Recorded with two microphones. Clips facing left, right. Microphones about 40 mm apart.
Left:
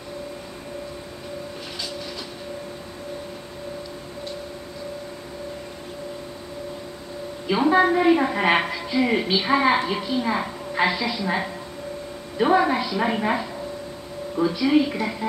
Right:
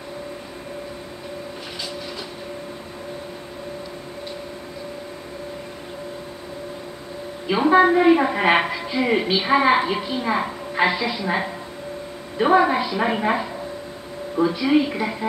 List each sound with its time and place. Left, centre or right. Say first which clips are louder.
7.4 s a woman's voice: right 3 dB; centre